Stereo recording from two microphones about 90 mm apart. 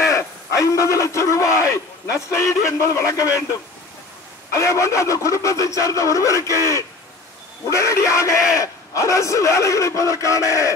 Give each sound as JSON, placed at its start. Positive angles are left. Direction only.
{"t": 0.1, "sound": "speech", "side_deg": 35}
{"t": 4.5, "sound": "speech", "side_deg": 35}